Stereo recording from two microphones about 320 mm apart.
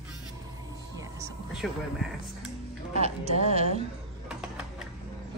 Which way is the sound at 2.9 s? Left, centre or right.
Centre.